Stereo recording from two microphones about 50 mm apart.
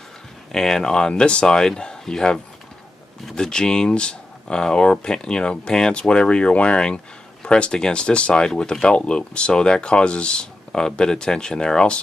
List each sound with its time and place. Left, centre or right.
0.5 s speech: centre